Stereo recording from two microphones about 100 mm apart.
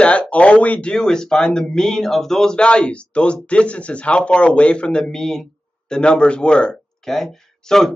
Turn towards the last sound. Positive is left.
turn(degrees=5)  # may be behind; listen again after turning